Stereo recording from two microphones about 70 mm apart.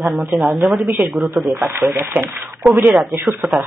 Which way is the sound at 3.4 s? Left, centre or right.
Centre.